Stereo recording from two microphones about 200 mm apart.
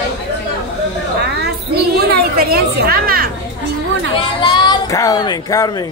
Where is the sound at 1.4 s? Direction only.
55° right (ahead or behind).